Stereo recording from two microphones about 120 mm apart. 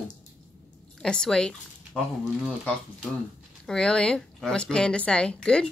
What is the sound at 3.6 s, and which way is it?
Speech, 5° left (ahead or behind).